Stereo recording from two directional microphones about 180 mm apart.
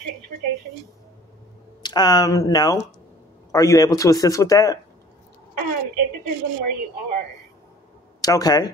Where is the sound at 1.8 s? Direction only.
25° left (ahead or behind).